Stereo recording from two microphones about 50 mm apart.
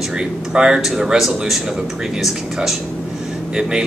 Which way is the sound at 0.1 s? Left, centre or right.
Centre.